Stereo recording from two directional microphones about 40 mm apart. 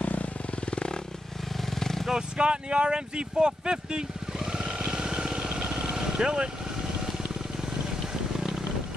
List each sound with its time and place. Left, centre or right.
0.0 s motorcycle: left
1.7 s vehicle: centre
2.3 s speech: right
4.5 s vehicle: centre
7.8 s a sound: centre